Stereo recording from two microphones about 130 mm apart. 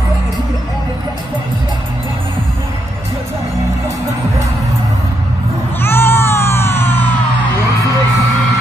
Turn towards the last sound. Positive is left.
turn(degrees=15)  # may be behind; listen again after turning